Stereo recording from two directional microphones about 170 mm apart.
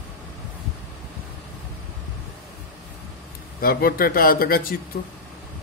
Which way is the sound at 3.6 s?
60° left (ahead or behind).